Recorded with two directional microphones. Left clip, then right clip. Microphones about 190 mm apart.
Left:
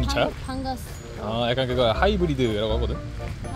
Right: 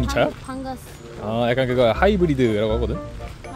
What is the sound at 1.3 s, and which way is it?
Speech, 40° right (ahead or behind).